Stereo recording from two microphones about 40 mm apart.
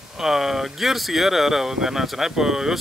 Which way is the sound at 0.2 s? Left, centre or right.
Centre.